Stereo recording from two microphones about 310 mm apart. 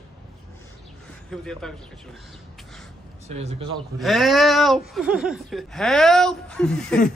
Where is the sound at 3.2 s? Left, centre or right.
Right.